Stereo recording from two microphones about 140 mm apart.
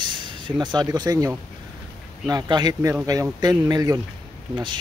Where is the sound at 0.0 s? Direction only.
35° right (ahead or behind).